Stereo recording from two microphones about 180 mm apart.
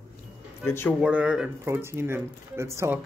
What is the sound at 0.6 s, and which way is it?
Speech, 15° left (ahead or behind).